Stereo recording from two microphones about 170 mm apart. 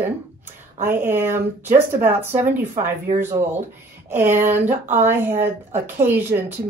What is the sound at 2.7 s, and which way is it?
Speech, 45° right (ahead or behind).